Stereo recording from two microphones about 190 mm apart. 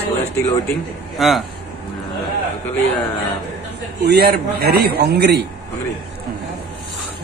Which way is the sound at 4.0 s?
60° right (ahead or behind).